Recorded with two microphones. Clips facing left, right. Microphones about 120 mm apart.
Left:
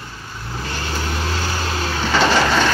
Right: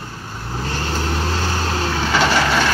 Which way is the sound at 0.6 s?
30° right (ahead or behind).